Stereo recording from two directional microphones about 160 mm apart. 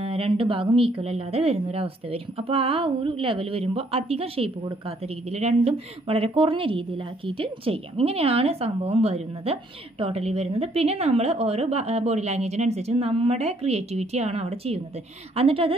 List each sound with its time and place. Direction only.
0.0 s a woman's voice: 35° right (ahead or behind)